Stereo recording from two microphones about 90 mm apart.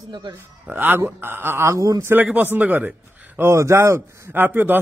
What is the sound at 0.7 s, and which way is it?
A man's voice, 25° right (ahead or behind).